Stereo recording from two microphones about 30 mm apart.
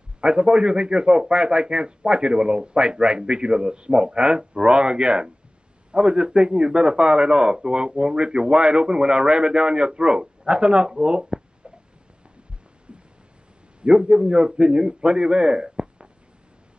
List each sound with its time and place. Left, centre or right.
0.2 s a man's voice: right
13.7 s a man's voice: right